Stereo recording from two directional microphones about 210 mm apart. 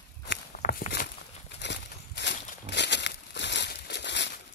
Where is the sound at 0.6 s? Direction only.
40° left (ahead or behind).